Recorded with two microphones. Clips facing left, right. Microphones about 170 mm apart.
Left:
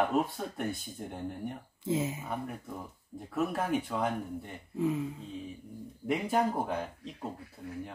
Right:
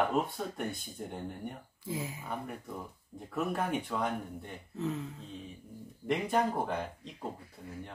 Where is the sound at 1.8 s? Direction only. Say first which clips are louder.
Left 7 dB; 25° left (ahead or behind).